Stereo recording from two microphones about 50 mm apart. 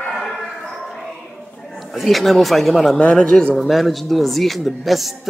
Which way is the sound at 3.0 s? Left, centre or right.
Left.